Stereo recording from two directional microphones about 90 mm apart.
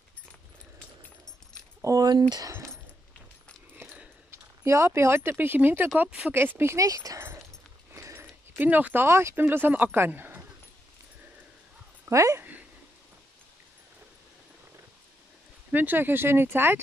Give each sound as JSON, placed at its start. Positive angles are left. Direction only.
{"t": 1.8, "sound": "a sound", "side_deg": -35}
{"t": 2.0, "sound": "speech", "side_deg": -50}
{"t": 4.3, "sound": "speech", "side_deg": -30}
{"t": 6.0, "sound": "speech", "side_deg": -10}
{"t": 6.3, "sound": "speech", "side_deg": -25}
{"t": 7.9, "sound": "a sound", "side_deg": -35}
{"t": 8.5, "sound": "speech", "side_deg": -20}
{"t": 12.1, "sound": "speech", "side_deg": -35}
{"t": 15.7, "sound": "speech", "side_deg": -20}